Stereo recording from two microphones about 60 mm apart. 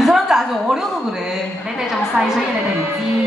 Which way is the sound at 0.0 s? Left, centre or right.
Centre.